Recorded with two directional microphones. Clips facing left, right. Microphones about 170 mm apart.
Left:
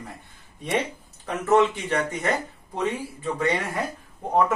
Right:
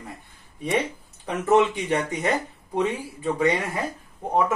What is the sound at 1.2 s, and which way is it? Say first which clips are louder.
Speech: even; 15° right (ahead or behind).